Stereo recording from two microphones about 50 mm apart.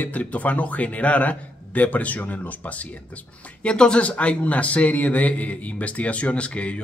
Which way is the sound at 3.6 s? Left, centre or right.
Centre.